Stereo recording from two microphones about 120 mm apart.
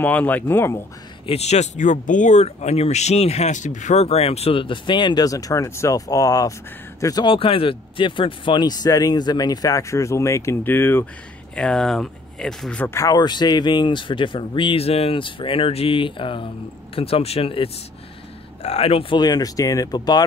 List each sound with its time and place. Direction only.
0.0 s speech: 15° left (ahead or behind)
1.2 s speech: 60° left (ahead or behind); by 7.2 s 30° left (ahead or behind)
7.2 s speech: 50° left (ahead or behind); by 11.1 s 15° left (ahead or behind)
11.5 s speech: 5° left (ahead or behind)
12.8 s speech: 25° left (ahead or behind)